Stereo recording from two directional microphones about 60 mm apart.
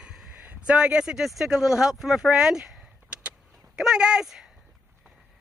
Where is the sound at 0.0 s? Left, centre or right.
Centre.